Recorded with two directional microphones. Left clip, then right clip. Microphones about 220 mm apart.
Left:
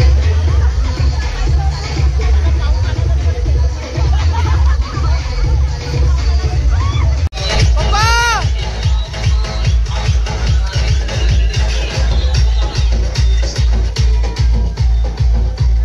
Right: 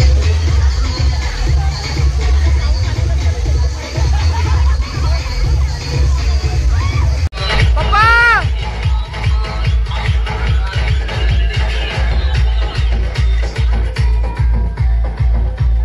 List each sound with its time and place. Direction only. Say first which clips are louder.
7.3 s music: right 1 dB; 50° left (ahead or behind)
7.9 s music: right 4 dB; 15° left (ahead or behind)
8.8 s music: even; 50° left (ahead or behind)